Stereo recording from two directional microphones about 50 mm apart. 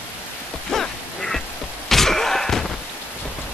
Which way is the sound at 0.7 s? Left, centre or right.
Centre.